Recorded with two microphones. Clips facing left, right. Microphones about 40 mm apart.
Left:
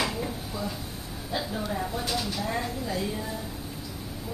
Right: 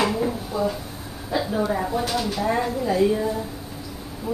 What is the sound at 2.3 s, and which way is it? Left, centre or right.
Speech, right.